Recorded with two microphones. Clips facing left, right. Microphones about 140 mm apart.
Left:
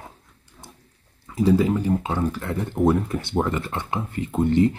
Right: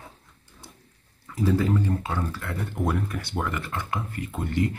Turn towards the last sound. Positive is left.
turn(degrees=25)  # may be behind; listen again after turning